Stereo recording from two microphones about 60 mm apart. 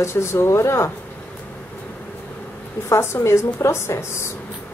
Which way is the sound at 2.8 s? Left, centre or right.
Left.